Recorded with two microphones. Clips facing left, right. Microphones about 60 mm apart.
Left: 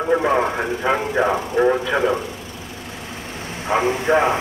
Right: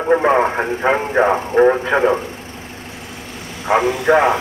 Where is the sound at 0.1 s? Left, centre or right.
Right.